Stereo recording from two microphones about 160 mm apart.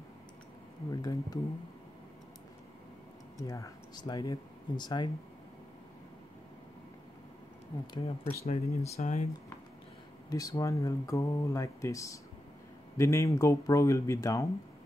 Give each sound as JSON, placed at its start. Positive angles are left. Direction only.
{"t": 0.8, "sound": "speech", "side_deg": 25}
{"t": 3.3, "sound": "speech", "side_deg": 20}
{"t": 7.8, "sound": "speech", "side_deg": 35}
{"t": 10.3, "sound": "speech", "side_deg": 20}